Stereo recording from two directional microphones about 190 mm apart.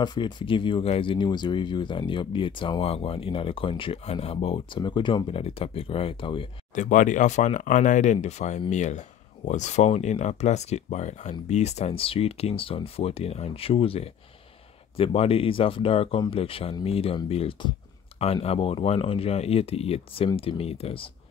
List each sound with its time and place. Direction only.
0.0 s speech: 25° left (ahead or behind)
6.7 s speech: 40° left (ahead or behind)